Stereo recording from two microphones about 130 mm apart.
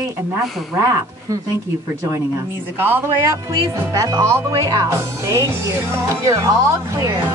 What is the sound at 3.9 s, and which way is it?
Speech, 25° right (ahead or behind).